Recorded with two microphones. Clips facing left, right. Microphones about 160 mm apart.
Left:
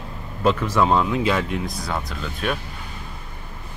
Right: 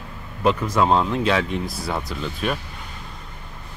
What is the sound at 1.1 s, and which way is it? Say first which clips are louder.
Speech: even; 5° left (ahead or behind).